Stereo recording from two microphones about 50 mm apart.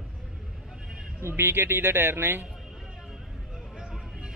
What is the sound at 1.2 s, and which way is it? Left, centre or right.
A man's voice, right.